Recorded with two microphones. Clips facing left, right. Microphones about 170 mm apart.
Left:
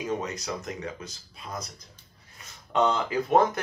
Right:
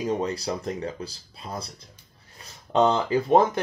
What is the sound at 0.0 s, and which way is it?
Speech, 30° right (ahead or behind).